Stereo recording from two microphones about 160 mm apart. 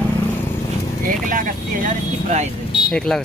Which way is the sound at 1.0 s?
60° right (ahead or behind).